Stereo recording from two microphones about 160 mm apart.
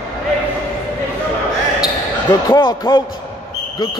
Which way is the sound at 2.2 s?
25° left (ahead or behind).